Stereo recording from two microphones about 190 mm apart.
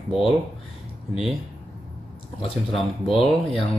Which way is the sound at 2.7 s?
Centre (ahead or behind).